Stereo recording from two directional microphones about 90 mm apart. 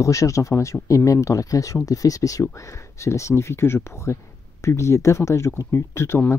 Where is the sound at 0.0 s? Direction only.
35° left (ahead or behind).